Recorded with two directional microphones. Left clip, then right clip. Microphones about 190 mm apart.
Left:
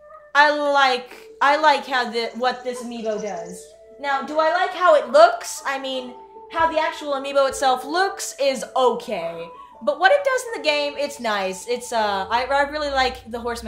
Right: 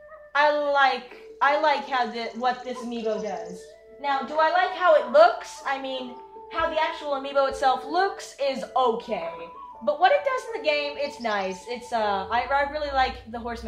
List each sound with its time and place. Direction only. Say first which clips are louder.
0.3 s a woman's voice: left 5 dB; 60° left (ahead or behind)
4.0 s a woman's voice: left 3 dB; 70° left (ahead or behind)